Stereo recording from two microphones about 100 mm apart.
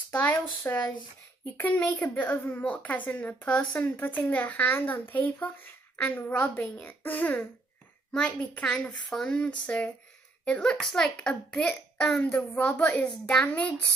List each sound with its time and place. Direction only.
0.1 s a child's voice: 20° left (ahead or behind)
12.5 s a child's voice: 15° left (ahead or behind)